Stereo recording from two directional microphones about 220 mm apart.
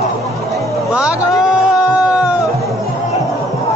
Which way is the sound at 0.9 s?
5° right (ahead or behind).